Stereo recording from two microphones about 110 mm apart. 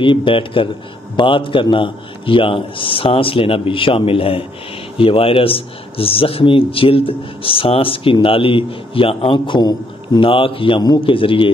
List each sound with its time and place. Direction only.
0.0 s a man's voice: 45° left (ahead or behind)
10.2 s a man's voice: 50° left (ahead or behind)